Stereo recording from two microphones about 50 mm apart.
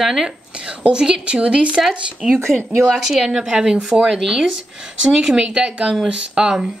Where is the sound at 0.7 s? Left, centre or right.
Centre.